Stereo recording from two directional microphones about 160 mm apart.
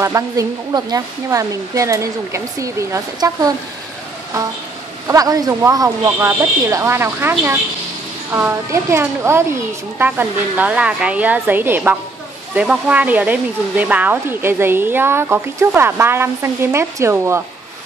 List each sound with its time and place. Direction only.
0.0 s speech: 20° right (ahead or behind)
5.0 s a woman's voice: 20° right (ahead or behind)